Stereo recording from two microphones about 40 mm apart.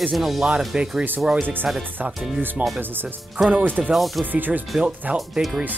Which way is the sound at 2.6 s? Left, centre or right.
Right.